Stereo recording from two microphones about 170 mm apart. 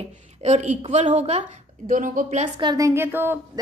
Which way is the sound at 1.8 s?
50° right (ahead or behind).